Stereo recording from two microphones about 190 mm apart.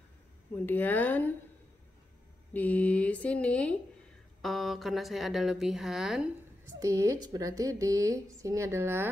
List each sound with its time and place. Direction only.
0.7 s speech: 10° left (ahead or behind)
2.5 s speech: 10° left (ahead or behind)
6.8 s a woman's voice: 15° right (ahead or behind)